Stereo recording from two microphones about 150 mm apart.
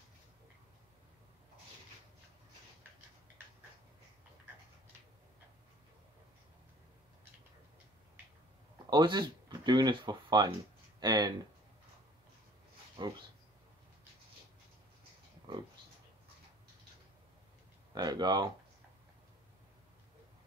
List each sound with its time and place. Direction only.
8.9 s speech: 30° right (ahead or behind)
13.0 s speech: 30° right (ahead or behind)
17.9 s speech: 30° right (ahead or behind)